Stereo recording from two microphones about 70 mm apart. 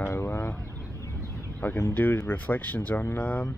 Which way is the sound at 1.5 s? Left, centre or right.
Left.